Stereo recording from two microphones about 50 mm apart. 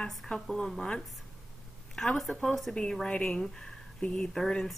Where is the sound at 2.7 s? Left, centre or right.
Centre.